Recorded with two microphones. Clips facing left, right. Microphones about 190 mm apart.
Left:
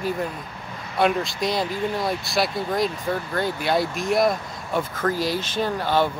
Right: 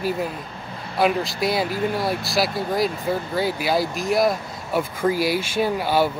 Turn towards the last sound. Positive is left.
turn(degrees=-10)  # may be behind; listen again after turning